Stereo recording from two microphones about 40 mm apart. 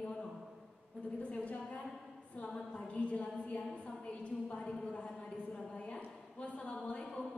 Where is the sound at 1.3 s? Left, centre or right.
Left.